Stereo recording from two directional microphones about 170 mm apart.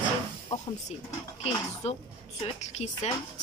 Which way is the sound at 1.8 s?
40° left (ahead or behind).